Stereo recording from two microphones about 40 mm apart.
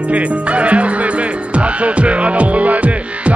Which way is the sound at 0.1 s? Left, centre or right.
Right.